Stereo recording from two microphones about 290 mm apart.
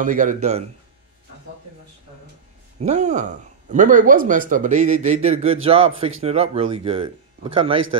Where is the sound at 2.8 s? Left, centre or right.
Right.